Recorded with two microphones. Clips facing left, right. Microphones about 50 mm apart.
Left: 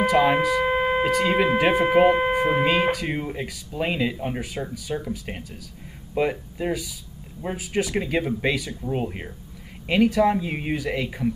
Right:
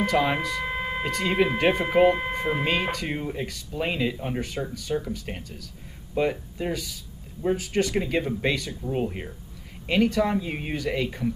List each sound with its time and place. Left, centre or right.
0.0 s speech: centre
0.7 s a sound: left
1.0 s speech: centre